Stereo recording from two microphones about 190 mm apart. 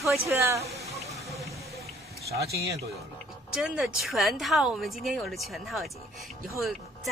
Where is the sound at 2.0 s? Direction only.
35° right (ahead or behind).